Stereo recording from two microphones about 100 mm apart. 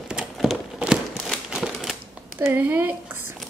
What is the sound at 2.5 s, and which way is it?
Speech, 20° right (ahead or behind).